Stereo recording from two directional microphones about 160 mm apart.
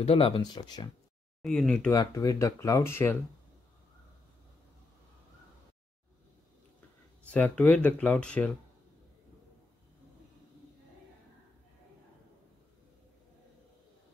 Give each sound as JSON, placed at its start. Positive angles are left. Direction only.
{"t": 0.0, "sound": "speech", "side_deg": 35}
{"t": 1.4, "sound": "speech", "side_deg": 0}
{"t": 1.9, "sound": "speech", "side_deg": 20}
{"t": 7.2, "sound": "speech", "side_deg": 10}